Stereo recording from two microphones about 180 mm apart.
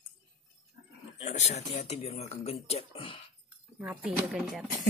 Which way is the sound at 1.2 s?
40° left (ahead or behind).